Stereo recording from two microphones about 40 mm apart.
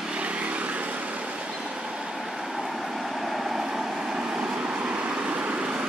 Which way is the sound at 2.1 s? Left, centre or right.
Centre.